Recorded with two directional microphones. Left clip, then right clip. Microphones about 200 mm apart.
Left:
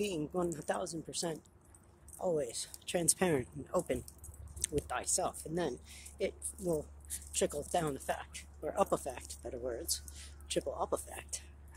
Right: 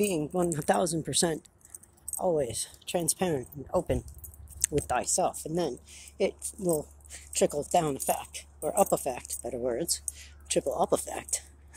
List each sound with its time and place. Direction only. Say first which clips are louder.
0.0 s speech: right 7 dB; 20° right (ahead or behind)
0.5 s speech: right 10 dB; 30° right (ahead or behind)
2.1 s speech: right 7 dB; 15° right (ahead or behind)
4.8 s speech: right 10 dB; 30° right (ahead or behind)